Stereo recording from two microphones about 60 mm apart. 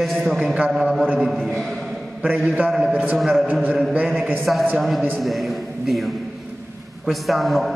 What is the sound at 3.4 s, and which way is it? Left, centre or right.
Speech, right.